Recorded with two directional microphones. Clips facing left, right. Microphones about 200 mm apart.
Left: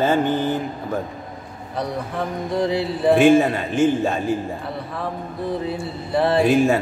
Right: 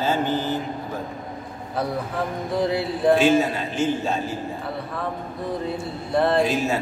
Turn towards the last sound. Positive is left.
turn(degrees=55)  # may be behind; listen again after turning